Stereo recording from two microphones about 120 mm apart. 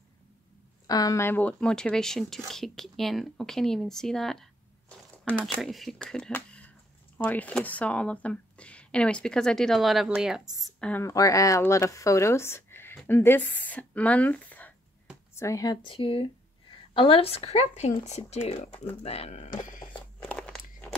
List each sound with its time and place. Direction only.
0.8 s speech: 30° left (ahead or behind); by 10.5 s 5° right (ahead or behind)
10.8 s a woman's voice: 10° left (ahead or behind)
11.1 s speech: 25° left (ahead or behind)
15.3 s speech: 25° left (ahead or behind)
15.8 s a woman's voice: 45° left (ahead or behind); by 19.5 s 65° left (ahead or behind)
19.9 s crunch: 10° left (ahead or behind)